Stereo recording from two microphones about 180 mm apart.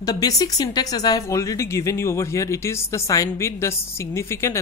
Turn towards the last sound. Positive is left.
turn(degrees=15)  # may be behind; listen again after turning